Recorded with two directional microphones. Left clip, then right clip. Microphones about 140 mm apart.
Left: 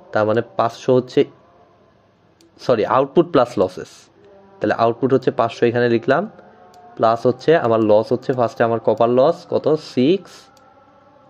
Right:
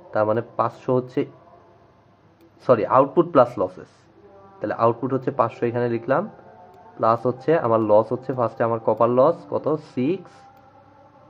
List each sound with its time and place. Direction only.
0.1 s speech: 35° left (ahead or behind)
2.6 s speech: 40° left (ahead or behind)